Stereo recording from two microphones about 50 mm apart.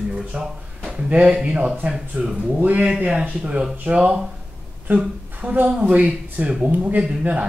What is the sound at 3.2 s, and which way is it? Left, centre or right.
Speech, right.